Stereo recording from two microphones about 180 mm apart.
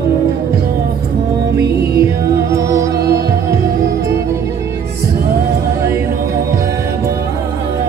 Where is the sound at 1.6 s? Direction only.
60° right (ahead or behind).